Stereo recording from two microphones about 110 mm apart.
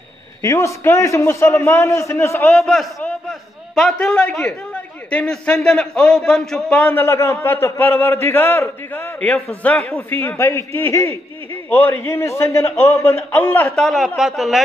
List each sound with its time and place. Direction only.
0.4 s a man's voice: 30° left (ahead or behind)
2.5 s a man's voice: centre (ahead or behind)
6.9 s a man's voice: 25° left (ahead or behind)
9.6 s a man's voice: 10° left (ahead or behind)
10.0 s a man's voice: 20° left (ahead or behind)
13.7 s speech: centre (ahead or behind)